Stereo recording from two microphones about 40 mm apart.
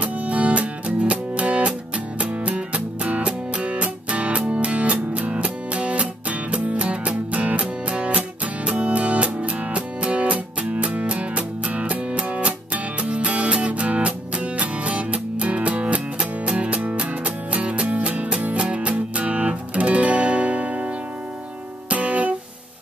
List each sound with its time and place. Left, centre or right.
0.0 s music: right